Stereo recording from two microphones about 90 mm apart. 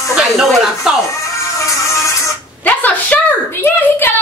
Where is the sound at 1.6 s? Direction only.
35° left (ahead or behind).